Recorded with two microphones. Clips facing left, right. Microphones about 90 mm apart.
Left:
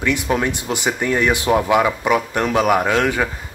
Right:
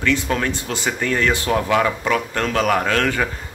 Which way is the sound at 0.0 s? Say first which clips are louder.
Left 1 dB; 15° left (ahead or behind).